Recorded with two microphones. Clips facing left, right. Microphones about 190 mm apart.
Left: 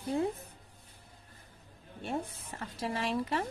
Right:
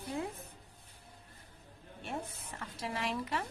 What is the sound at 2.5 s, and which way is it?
Speech, 35° left (ahead or behind).